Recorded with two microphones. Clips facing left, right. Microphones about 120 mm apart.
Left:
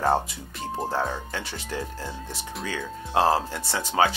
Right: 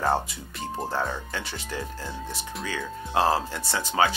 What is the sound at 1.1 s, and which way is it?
Speech, 35° left (ahead or behind).